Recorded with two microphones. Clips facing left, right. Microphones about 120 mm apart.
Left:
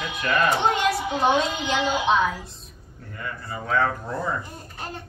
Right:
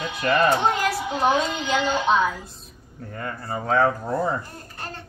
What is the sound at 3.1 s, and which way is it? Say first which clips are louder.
Speech: right 4 dB; 40° right (ahead or behind).